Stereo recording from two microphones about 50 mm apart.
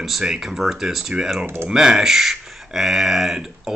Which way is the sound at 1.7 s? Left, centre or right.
Centre.